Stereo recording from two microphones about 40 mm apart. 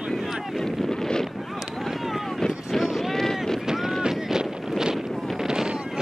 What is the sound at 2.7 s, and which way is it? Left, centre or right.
Boat, centre.